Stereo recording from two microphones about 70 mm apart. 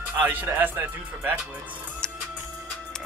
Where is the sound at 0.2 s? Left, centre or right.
Right.